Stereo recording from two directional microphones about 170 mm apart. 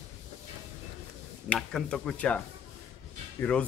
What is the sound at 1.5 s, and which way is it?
Speech, centre (ahead or behind).